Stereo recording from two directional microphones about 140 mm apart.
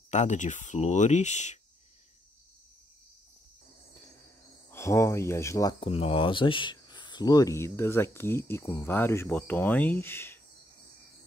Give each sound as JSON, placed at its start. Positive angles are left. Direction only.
{"t": 0.1, "sound": "speech", "side_deg": 55}
{"t": 4.6, "sound": "speech", "side_deg": 20}
{"t": 5.8, "sound": "speech", "side_deg": 45}